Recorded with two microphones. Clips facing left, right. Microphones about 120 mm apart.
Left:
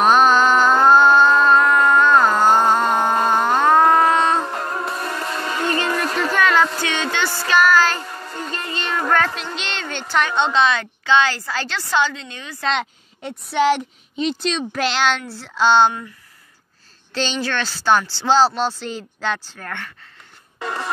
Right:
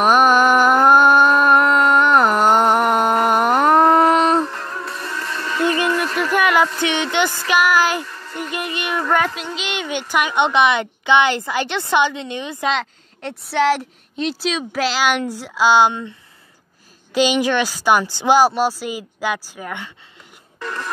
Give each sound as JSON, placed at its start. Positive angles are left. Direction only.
{"t": 0.0, "sound": "music", "side_deg": -10}
{"t": 3.3, "sound": "a sound", "side_deg": -15}
{"t": 4.5, "sound": "music", "side_deg": 45}
{"t": 5.9, "sound": "a sound", "side_deg": 40}
{"t": 6.3, "sound": "a sound", "side_deg": -10}
{"t": 6.8, "sound": "a woman's voice", "side_deg": -20}
{"t": 8.0, "sound": "music", "side_deg": 45}
{"t": 8.4, "sound": "music", "side_deg": -15}
{"t": 9.6, "sound": "a woman's voice", "side_deg": -10}
{"t": 12.7, "sound": "a woman's voice", "side_deg": 0}
{"t": 17.1, "sound": "a woman's voice", "side_deg": -10}